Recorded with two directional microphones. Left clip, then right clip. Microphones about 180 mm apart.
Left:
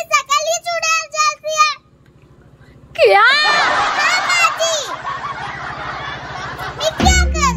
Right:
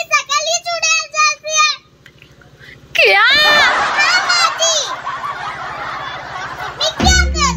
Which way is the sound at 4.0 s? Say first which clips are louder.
Right 2 dB; 25° left (ahead or behind).